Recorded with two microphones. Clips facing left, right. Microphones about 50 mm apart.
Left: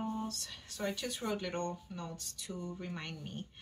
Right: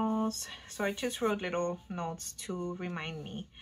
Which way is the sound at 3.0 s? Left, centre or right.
Right.